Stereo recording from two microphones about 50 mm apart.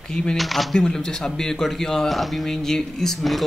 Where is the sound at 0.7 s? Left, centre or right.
Centre.